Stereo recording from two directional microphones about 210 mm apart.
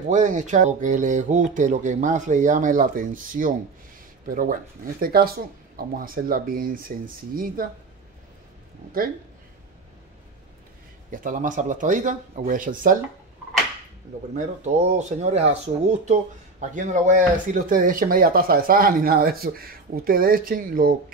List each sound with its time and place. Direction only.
0.1 s speech: 35° right (ahead or behind)
11.1 s speech: 40° right (ahead or behind)
14.3 s speech: 35° right (ahead or behind)